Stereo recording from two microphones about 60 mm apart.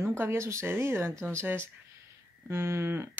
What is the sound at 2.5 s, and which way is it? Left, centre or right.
Speech, right.